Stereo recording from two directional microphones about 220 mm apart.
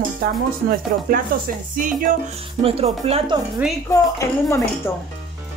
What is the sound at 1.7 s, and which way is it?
Stir, 35° right (ahead or behind).